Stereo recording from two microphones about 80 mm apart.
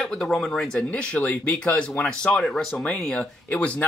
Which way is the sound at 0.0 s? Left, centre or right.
Centre.